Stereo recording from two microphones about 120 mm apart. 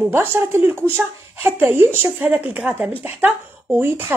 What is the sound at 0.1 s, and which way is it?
Speech, 20° right (ahead or behind).